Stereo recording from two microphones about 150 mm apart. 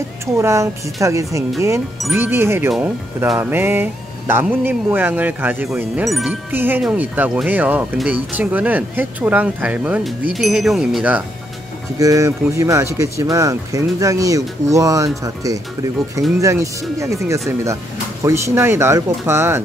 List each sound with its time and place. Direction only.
0.4 s speech: 20° right (ahead or behind)
6.0 s speech: centre (ahead or behind)
6.5 s speech: 15° right (ahead or behind)
12.0 s speech: 20° right (ahead or behind)